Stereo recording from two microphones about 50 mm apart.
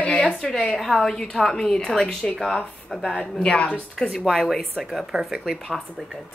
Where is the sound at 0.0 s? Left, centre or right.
Left.